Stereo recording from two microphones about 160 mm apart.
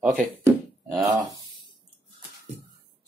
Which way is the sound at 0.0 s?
10° right (ahead or behind).